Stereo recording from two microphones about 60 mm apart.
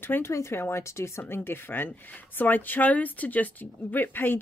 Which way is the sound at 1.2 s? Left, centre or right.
Left.